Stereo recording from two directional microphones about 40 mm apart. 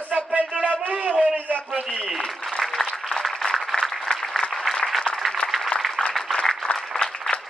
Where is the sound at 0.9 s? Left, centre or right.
Right.